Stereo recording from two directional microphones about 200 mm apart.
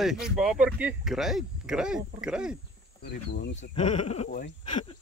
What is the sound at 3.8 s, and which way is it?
Speech, 35° left (ahead or behind).